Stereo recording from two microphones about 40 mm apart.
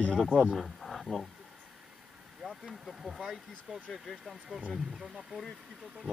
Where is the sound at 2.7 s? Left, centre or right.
Centre.